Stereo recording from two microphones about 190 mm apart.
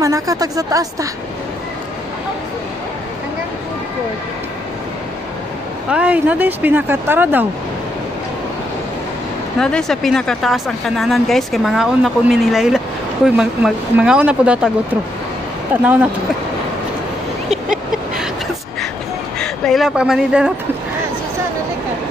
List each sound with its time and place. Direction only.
0.0 s speech: 15° right (ahead or behind)
5.9 s speech: 5° right (ahead or behind)
9.6 s speech: 5° left (ahead or behind)
15.7 s speech: 10° right (ahead or behind)
19.4 s speech: centre (ahead or behind)